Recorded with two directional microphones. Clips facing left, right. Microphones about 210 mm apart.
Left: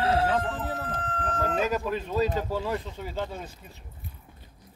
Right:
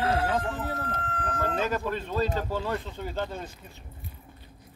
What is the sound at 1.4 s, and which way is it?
Speech, 10° left (ahead or behind).